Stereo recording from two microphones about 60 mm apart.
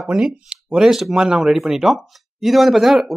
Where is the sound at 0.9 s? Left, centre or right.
Centre.